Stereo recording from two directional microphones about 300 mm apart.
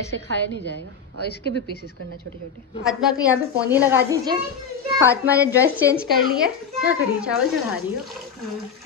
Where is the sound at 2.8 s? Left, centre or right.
Centre.